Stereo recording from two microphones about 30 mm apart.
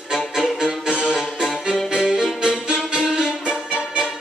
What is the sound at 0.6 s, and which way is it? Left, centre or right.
Music, right.